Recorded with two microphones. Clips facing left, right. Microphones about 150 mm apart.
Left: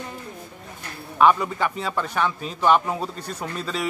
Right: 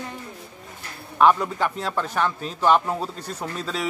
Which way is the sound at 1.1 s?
5° left (ahead or behind).